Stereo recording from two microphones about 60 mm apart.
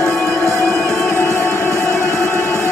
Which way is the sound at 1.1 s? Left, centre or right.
Left.